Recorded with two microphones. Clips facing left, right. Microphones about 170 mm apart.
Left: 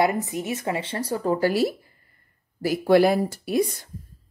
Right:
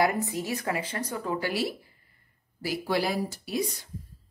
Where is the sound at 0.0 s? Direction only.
20° left (ahead or behind).